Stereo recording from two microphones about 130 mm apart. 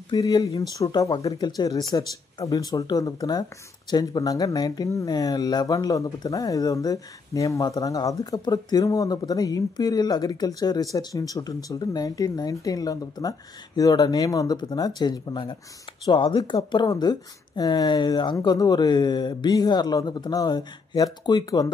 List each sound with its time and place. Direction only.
0.1 s speech: 30° left (ahead or behind)